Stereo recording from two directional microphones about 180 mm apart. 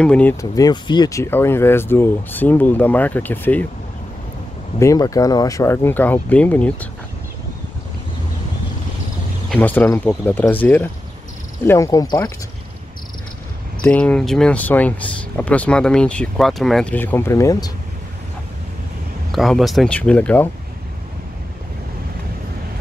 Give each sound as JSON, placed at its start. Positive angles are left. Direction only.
{"t": 0.0, "sound": "speech", "side_deg": 5}
{"t": 4.7, "sound": "speech", "side_deg": 20}
{"t": 9.5, "sound": "speech", "side_deg": 10}
{"t": 13.8, "sound": "speech", "side_deg": 5}
{"t": 19.3, "sound": "speech", "side_deg": 0}